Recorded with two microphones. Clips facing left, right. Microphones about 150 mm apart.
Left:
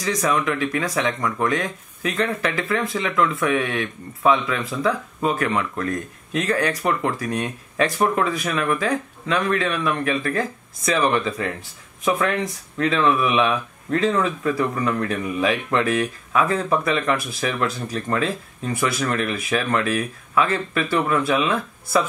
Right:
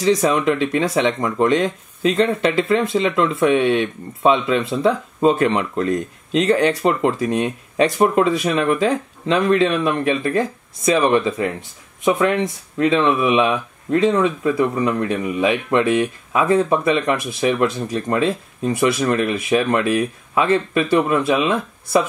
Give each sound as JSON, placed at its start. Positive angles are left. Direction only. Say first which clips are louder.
{"t": 0.0, "sound": "speech", "louder": "right 6 dB", "side_deg": -25}